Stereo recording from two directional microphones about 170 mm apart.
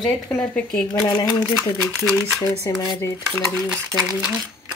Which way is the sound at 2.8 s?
20° left (ahead or behind).